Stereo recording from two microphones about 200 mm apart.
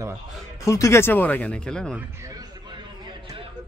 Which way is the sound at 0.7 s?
15° left (ahead or behind).